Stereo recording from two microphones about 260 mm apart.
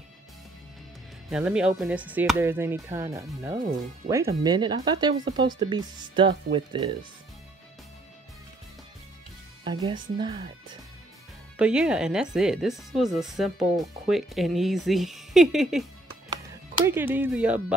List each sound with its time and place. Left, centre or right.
1.3 s speech: centre
9.7 s speech: centre
11.5 s speech: centre
16.8 s speech: centre